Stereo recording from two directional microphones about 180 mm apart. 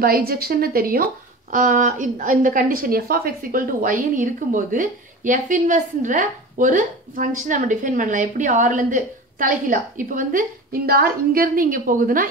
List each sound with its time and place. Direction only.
0.0 s a woman's voice: 55° right (ahead or behind)